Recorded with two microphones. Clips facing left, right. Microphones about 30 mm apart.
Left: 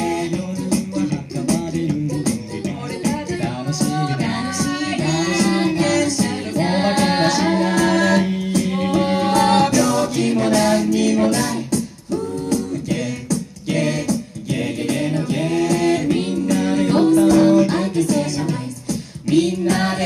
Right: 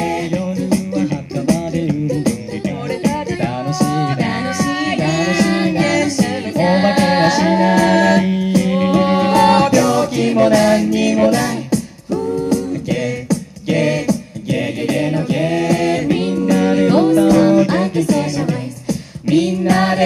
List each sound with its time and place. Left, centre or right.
0.0 s music: right
0.9 s beatboxing: centre
3.0 s music: right
8.3 s a capella: centre
16.1 s music: centre